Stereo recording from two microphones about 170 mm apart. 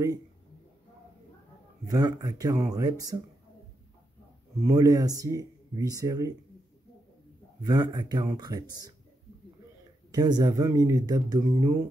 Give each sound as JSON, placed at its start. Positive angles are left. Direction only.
{"t": 1.9, "sound": "speech", "side_deg": -25}
{"t": 4.6, "sound": "speech", "side_deg": -20}
{"t": 7.6, "sound": "speech", "side_deg": -25}
{"t": 10.1, "sound": "speech", "side_deg": -25}